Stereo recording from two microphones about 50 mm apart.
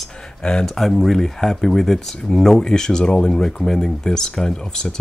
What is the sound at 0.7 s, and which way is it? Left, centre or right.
Speech, centre.